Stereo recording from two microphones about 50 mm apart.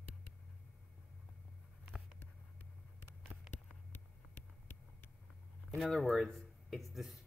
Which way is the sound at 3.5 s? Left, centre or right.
Left.